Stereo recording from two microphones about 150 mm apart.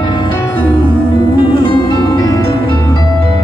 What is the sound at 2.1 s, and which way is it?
Music, 25° left (ahead or behind).